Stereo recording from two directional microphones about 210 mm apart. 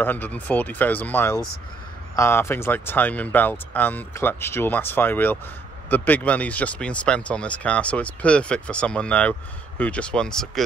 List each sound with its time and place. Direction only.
0.0 s speech: 10° left (ahead or behind)